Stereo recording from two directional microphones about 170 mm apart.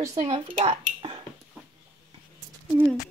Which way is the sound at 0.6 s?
30° right (ahead or behind).